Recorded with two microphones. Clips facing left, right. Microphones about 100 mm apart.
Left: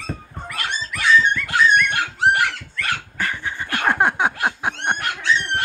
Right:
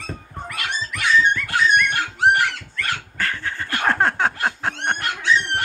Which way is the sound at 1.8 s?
10° left (ahead or behind).